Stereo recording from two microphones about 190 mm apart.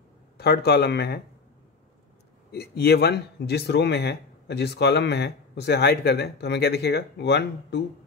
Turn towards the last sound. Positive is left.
turn(degrees=60)  # may be behind; listen again after turning